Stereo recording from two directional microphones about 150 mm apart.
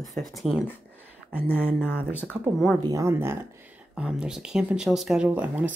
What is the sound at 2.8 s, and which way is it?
Speech, 25° right (ahead or behind).